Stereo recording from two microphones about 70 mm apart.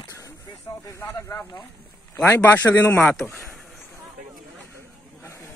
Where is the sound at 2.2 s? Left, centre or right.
Left.